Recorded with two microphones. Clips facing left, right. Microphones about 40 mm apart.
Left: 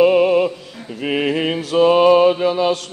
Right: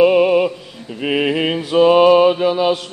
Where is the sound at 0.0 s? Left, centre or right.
Centre.